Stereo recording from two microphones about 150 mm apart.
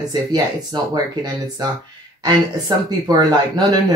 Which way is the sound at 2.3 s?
25° right (ahead or behind).